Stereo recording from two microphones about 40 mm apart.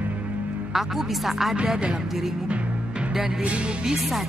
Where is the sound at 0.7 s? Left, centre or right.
Centre.